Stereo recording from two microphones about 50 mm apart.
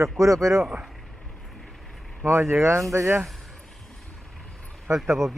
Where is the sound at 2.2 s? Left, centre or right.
Right.